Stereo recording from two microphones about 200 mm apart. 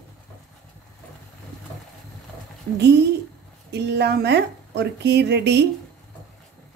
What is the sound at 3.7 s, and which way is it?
A woman's voice, 55° right (ahead or behind).